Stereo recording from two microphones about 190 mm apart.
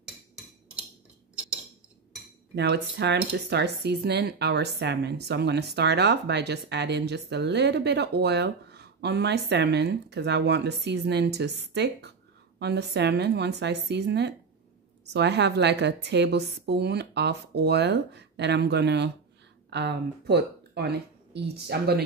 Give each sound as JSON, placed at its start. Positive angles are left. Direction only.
{"t": 2.5, "sound": "speech", "side_deg": -60}